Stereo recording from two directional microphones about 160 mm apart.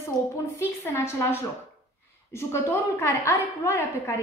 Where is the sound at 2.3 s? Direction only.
15° left (ahead or behind).